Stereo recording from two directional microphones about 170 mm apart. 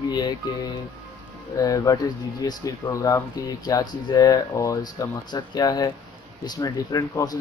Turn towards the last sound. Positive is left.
turn(degrees=20)  # may be behind; listen again after turning